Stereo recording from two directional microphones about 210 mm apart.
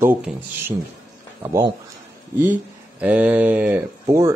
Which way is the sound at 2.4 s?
10° right (ahead or behind).